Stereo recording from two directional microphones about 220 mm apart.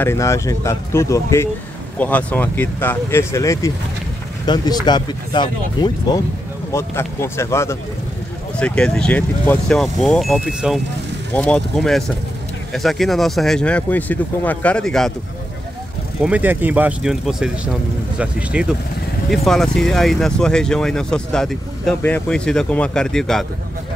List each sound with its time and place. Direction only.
0.0 s speech: 15° left (ahead or behind)
16.2 s speech: 5° right (ahead or behind)